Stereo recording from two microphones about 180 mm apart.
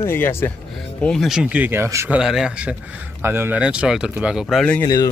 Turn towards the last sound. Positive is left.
turn(degrees=20)  # may be behind; listen again after turning